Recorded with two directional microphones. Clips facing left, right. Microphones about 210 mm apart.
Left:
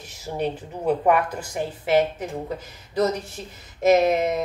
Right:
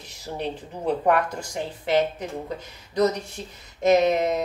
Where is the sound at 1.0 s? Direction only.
5° left (ahead or behind).